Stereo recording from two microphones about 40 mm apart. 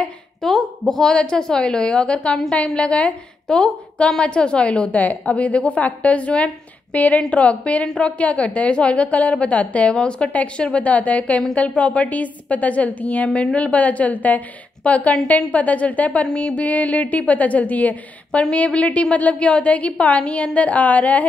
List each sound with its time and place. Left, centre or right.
0.4 s a sound: centre
1.1 s a woman's voice: centre
3.4 s a woman's voice: centre
4.9 s a woman's voice: left
9.9 s a woman's voice: left
10.6 s a woman's voice: left
13.3 s a woman's voice: left
18.4 s a woman's voice: left